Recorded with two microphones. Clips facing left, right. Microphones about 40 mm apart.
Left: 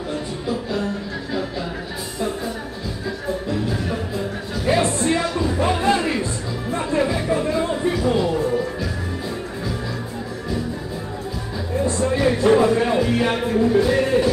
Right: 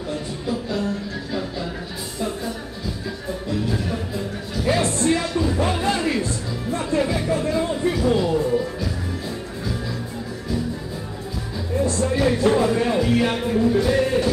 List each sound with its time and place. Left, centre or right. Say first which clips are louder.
0.5 s music: left 1 dB; centre
2.1 s music: left 1 dB; centre
3.8 s music: left 2 dB; centre
11.8 s a sound: left 1 dB; left
12.1 s music: left 3 dB; centre